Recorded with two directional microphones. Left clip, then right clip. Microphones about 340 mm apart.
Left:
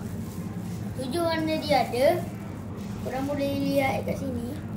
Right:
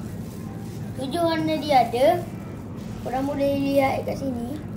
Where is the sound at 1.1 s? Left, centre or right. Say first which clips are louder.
Right 3 dB; centre.